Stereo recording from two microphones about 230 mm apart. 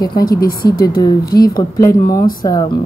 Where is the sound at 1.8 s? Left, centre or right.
Centre.